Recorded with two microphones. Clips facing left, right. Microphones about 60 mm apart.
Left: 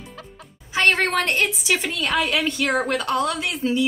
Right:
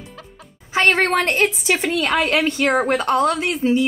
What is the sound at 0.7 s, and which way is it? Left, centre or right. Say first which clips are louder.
Speech: right 3 dB; right.